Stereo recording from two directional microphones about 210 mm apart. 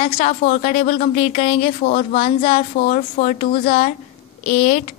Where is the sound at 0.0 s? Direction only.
35° left (ahead or behind).